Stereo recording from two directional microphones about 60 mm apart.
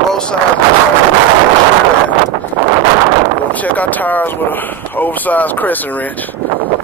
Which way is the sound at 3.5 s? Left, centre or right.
Left.